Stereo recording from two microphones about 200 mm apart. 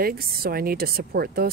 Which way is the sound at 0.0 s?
50° right (ahead or behind).